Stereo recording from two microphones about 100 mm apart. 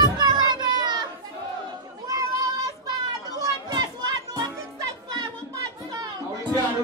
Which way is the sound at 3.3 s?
40° right (ahead or behind).